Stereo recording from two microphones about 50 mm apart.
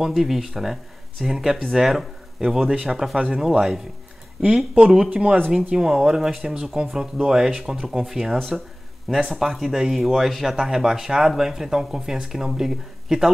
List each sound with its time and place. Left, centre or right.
0.0 s speech: centre
4.7 s speech: right